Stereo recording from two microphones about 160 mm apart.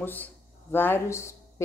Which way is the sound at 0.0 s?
10° left (ahead or behind).